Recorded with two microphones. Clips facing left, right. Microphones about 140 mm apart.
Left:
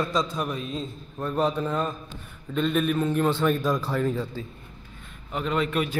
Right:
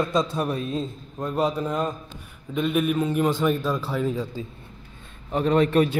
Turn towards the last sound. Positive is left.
turn(degrees=-40)  # may be behind; listen again after turning